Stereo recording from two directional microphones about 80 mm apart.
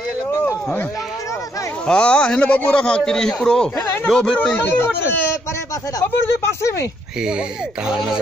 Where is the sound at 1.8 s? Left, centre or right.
Centre; by 6.0 s left.